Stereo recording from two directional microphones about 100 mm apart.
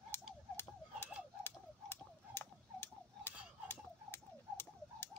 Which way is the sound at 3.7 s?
20° left (ahead or behind).